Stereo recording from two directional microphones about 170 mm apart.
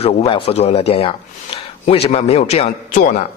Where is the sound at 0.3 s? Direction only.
35° left (ahead or behind).